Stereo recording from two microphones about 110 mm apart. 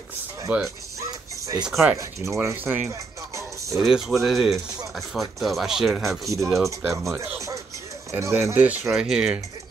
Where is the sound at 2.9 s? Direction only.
30° right (ahead or behind).